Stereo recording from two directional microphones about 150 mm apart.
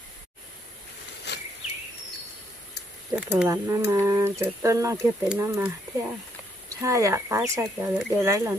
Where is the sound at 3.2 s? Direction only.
10° right (ahead or behind).